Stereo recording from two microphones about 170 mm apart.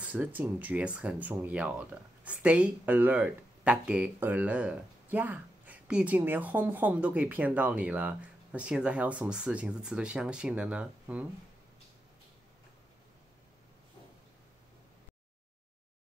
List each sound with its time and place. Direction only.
0.0 s speech: 10° right (ahead or behind)